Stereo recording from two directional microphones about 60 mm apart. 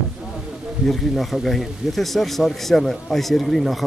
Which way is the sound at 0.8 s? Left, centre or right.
Centre.